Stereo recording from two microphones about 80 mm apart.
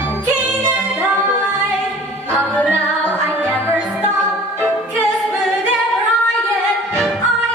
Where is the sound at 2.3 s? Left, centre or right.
Centre.